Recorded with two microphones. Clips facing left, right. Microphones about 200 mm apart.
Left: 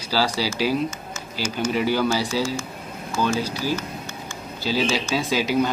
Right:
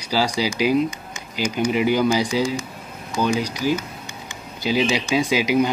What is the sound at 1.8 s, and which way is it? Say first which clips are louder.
Speech: right 3 dB; 15° right (ahead or behind).